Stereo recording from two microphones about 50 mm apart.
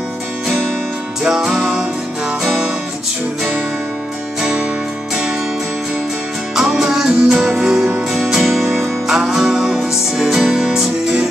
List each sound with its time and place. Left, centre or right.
1.2 s music: centre
4.4 s music: centre
6.5 s music: centre
8.1 s music: centre